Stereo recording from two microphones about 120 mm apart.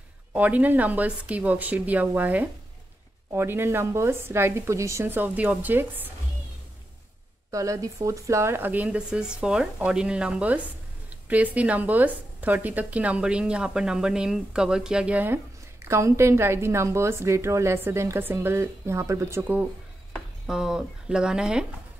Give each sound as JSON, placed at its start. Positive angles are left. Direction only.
{"t": 0.3, "sound": "a woman's voice", "side_deg": -10}
{"t": 7.5, "sound": "a woman's voice", "side_deg": -25}
{"t": 20.4, "sound": "a woman's voice", "side_deg": -5}